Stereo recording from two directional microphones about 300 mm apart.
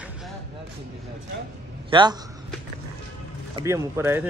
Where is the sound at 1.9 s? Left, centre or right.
Centre.